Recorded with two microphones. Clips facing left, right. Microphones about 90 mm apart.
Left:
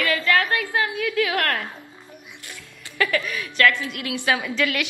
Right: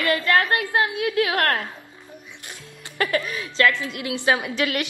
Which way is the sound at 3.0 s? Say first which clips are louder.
Even; 30° right (ahead or behind).